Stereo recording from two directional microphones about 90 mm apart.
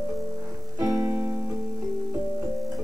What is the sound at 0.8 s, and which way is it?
Music, 45° right (ahead or behind).